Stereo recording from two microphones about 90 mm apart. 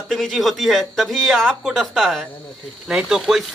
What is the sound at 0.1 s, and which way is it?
Speech, centre (ahead or behind).